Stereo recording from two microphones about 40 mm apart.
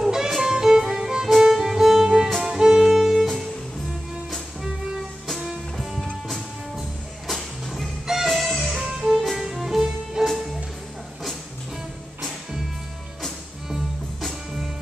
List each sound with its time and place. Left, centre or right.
0.0 s music: centre
7.2 s music: centre
10.2 s music: centre
12.2 s music: centre
13.7 s music: centre